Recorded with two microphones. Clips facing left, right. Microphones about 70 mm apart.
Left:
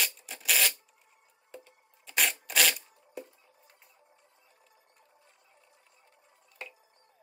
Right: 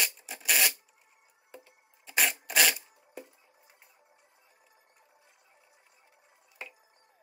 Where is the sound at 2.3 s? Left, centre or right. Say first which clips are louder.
Right 1 dB; centre.